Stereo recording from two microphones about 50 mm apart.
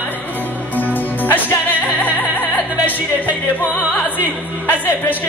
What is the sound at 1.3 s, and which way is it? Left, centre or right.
Music, left.